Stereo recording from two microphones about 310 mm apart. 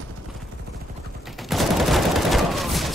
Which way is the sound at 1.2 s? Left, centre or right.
Centre.